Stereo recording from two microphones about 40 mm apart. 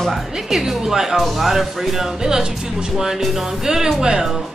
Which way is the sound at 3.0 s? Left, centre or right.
Centre.